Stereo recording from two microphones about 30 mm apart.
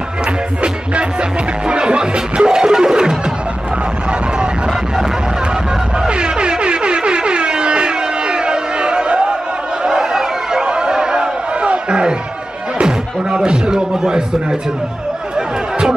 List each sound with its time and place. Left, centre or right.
1.7 s music: right
6.0 s music: right
9.8 s a sound: centre
10.6 s music: right